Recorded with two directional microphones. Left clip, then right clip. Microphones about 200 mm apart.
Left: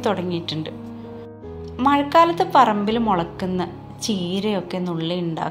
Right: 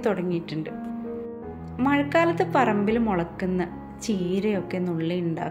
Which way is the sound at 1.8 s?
10° right (ahead or behind).